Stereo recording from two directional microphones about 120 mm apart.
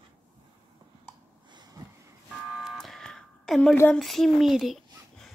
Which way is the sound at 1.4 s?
35° right (ahead or behind).